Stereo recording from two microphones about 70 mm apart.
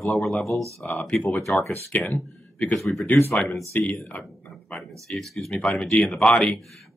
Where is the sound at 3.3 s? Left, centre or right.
Centre.